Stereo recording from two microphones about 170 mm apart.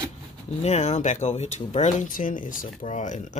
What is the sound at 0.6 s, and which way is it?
Speech, 40° left (ahead or behind).